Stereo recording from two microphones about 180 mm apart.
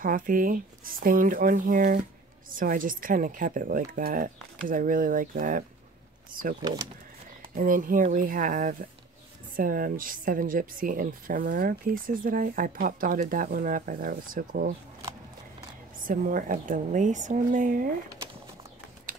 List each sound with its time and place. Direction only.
0.0 s speech: 50° right (ahead or behind)
6.7 s speech: 25° right (ahead or behind)
7.5 s speech: 50° right (ahead or behind)
16.0 s speech: 50° right (ahead or behind)
19.1 s ratchet: 50° right (ahead or behind)